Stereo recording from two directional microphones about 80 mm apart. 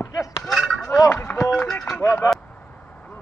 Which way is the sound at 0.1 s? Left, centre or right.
Left.